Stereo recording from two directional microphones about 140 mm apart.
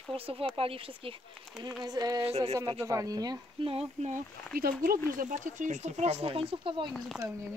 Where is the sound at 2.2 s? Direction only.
50° right (ahead or behind).